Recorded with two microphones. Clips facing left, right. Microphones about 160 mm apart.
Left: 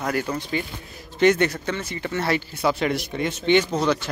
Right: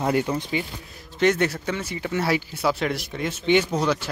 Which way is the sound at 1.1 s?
Centre (ahead or behind).